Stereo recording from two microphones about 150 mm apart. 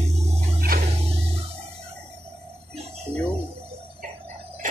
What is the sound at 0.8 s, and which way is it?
Music, 45° right (ahead or behind).